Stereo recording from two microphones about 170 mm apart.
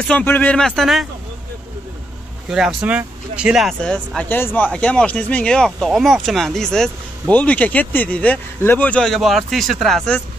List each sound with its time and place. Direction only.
0.0 s speech: 10° left (ahead or behind)
2.5 s speech: 5° right (ahead or behind)